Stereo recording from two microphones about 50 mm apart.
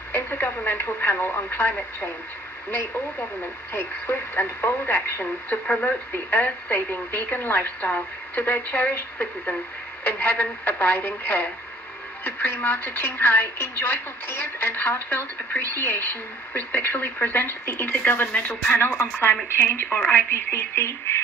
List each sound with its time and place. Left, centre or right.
0.1 s speech: left
3.7 s speech: left
5.5 s a woman's voice: left
19.5 s a woman's voice: left
20.7 s speech: left